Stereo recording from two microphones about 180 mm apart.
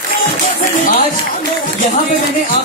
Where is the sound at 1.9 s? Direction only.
45° left (ahead or behind).